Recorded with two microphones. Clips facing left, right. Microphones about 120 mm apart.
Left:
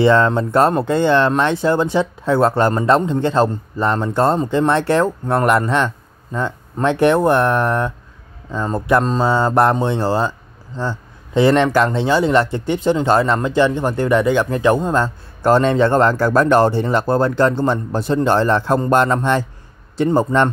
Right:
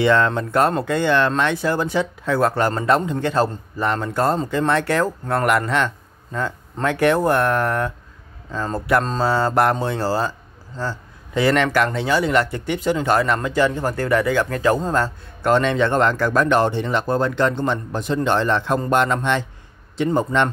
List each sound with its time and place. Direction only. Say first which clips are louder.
0.0 s speech: left 4 dB; 30° left (ahead or behind)
11.3 s speech: left 4 dB; 25° left (ahead or behind)
15.4 s speech: left 4 dB; 35° left (ahead or behind)